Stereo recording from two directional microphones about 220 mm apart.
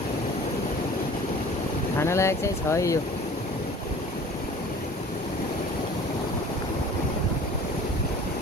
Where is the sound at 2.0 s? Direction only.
10° left (ahead or behind).